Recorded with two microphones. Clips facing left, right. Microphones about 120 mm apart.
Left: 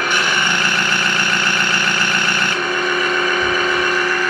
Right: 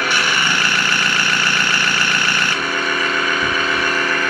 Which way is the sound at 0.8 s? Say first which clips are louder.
Left 1 dB; 20° left (ahead or behind).